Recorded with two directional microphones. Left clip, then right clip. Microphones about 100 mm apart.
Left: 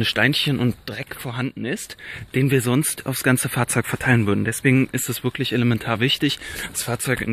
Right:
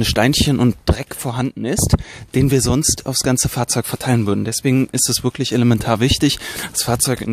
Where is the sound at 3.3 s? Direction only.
20° right (ahead or behind).